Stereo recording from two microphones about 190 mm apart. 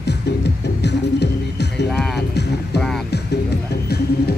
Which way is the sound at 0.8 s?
65° left (ahead or behind).